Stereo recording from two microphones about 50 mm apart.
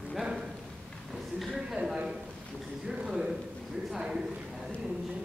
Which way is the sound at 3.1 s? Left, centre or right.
Centre.